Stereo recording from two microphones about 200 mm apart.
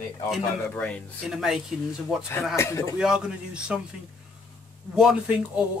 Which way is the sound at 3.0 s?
5° right (ahead or behind).